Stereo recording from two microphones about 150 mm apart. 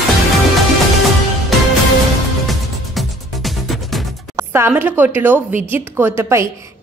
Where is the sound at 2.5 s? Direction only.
Centre (ahead or behind).